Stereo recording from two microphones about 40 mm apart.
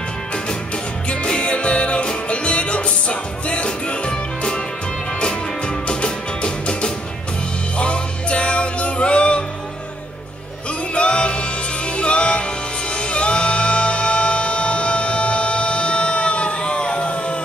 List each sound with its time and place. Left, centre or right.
1.0 s music: left
11.0 s music: left